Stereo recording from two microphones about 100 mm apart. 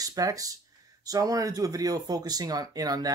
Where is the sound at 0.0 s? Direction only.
35° right (ahead or behind).